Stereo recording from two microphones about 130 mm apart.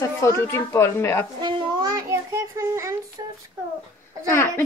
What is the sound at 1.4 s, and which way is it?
A child's voice, 30° right (ahead or behind).